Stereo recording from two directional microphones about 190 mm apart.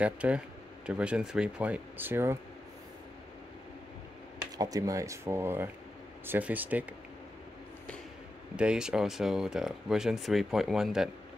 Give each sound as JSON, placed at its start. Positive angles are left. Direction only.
{"t": 0.0, "sound": "speech", "side_deg": -5}
{"t": 4.6, "sound": "speech", "side_deg": -20}
{"t": 8.5, "sound": "speech", "side_deg": -5}